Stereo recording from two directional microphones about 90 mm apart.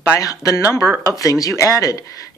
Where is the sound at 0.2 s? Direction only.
40° left (ahead or behind).